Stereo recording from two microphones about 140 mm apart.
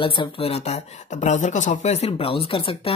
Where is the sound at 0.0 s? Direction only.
40° left (ahead or behind).